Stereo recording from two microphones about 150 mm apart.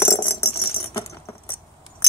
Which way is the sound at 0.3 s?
40° left (ahead or behind).